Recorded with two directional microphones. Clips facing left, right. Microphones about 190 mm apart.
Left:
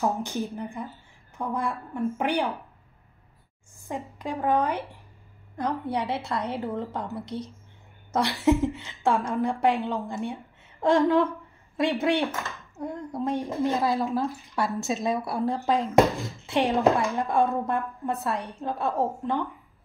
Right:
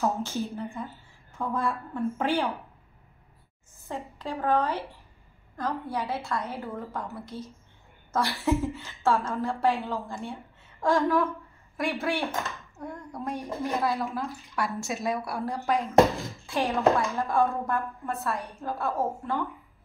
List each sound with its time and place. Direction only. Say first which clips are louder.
0.0 s speech: left 1 dB; 15° left (ahead or behind)
3.9 s speech: left 2 dB; 15° left (ahead or behind)